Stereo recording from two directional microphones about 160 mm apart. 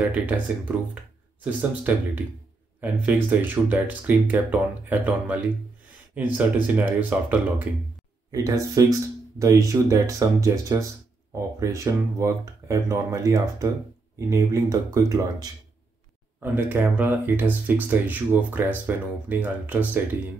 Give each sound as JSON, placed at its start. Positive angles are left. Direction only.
{"t": 0.0, "sound": "speech", "side_deg": -10}
{"t": 1.0, "sound": "a sound", "side_deg": -10}
{"t": 1.4, "sound": "speech", "side_deg": -10}
{"t": 8.3, "sound": "speech", "side_deg": -20}
{"t": 16.5, "sound": "speech", "side_deg": -10}